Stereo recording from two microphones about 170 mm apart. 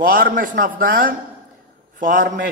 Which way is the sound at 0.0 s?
55° right (ahead or behind).